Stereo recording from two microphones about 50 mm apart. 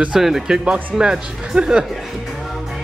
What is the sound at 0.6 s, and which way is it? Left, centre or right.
Speech, centre.